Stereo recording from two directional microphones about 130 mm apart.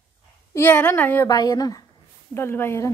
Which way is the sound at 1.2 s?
30° left (ahead or behind).